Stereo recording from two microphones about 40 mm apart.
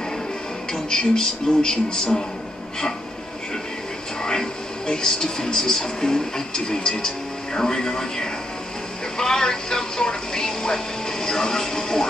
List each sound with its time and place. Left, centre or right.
0.8 s speech: centre
4.2 s speech: centre
9.2 s television: centre